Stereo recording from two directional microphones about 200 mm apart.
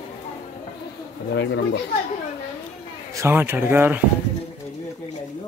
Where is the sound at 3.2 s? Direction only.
10° right (ahead or behind).